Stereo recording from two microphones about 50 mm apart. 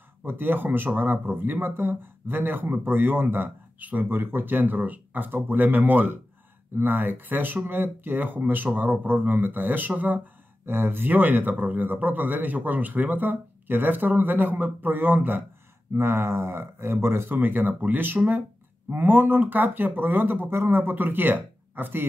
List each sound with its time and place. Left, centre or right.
0.3 s speech: right
4.1 s speech: right
10.6 s speech: right
16.0 s speech: right
17.3 s speech: right